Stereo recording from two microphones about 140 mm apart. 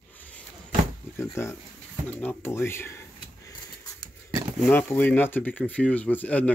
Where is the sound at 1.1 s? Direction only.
20° left (ahead or behind).